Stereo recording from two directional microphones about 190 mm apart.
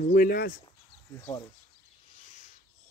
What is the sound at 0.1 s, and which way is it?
Speech, 50° left (ahead or behind).